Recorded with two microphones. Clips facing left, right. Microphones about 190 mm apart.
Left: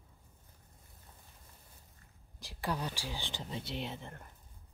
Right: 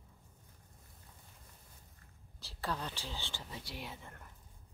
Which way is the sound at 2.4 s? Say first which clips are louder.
Left 3 dB; 15° left (ahead or behind).